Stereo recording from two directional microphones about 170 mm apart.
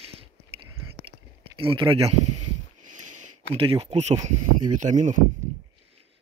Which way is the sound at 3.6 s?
35° right (ahead or behind).